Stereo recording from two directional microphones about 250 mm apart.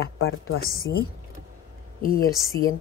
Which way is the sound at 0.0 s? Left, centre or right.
Left.